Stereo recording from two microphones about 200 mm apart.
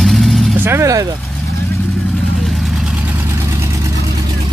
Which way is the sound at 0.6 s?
15° right (ahead or behind).